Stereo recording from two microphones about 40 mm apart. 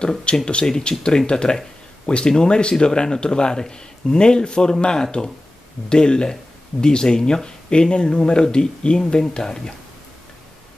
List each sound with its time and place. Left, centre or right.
0.5 s speech: left